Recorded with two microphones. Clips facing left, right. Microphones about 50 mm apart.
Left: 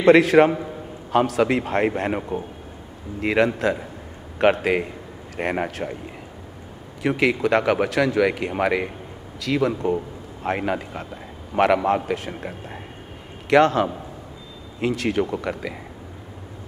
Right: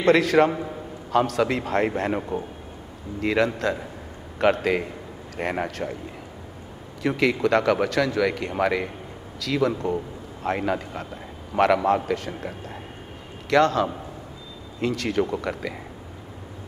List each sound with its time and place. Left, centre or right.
0.1 s a man's voice: left
1.1 s a man's voice: centre
7.0 s a man's voice: centre